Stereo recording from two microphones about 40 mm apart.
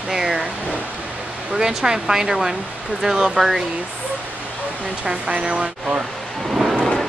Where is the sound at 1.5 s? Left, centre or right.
Centre.